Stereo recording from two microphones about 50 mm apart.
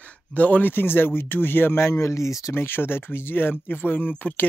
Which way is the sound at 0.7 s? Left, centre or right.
Left.